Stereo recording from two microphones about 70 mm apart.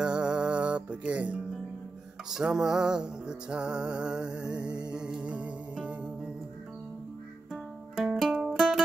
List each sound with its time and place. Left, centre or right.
0.0 s music: centre
7.5 s music: centre